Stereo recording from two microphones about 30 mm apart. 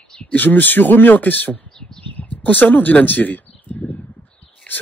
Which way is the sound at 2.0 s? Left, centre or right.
Left.